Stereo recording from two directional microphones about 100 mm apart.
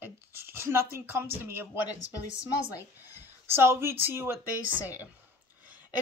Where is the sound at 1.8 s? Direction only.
40° left (ahead or behind).